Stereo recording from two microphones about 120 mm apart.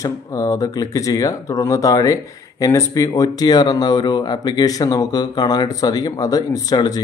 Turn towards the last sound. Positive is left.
turn(degrees=30)  # may be behind; listen again after turning